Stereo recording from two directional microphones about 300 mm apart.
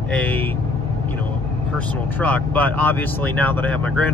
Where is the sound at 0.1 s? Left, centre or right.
Centre.